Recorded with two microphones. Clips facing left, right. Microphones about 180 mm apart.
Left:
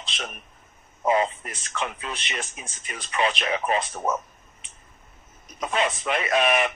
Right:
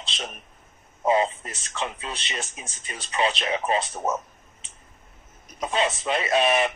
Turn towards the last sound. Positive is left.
turn(degrees=-30)  # may be behind; listen again after turning